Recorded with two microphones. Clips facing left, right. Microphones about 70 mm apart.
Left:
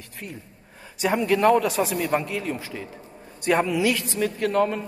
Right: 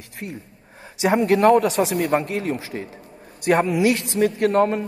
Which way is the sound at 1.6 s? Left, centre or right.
Right.